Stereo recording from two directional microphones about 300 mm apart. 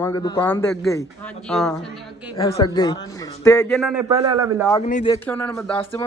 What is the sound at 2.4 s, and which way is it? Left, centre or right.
A man's voice, centre.